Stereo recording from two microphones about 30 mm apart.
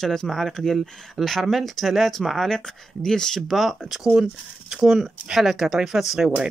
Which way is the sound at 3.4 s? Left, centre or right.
Centre.